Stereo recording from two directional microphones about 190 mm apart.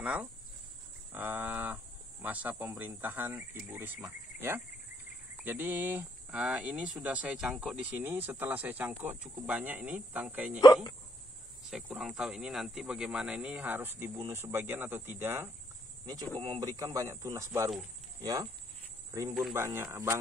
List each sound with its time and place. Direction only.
0.0 s speech: 5° right (ahead or behind)
10.6 s speech: 20° left (ahead or behind)
11.6 s speech: centre (ahead or behind); by 18.5 s 20° right (ahead or behind)
19.5 s speech: 15° right (ahead or behind)